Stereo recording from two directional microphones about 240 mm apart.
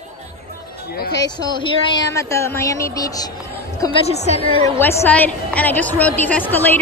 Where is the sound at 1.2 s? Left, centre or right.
Centre.